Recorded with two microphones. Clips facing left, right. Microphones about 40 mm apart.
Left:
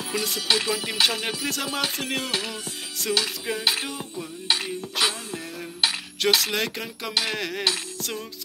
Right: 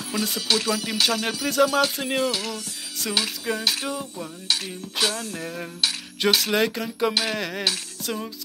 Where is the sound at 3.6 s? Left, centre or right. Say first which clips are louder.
Left 3 dB; left.